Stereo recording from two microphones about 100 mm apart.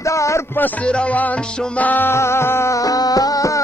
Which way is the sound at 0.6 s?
15° left (ahead or behind).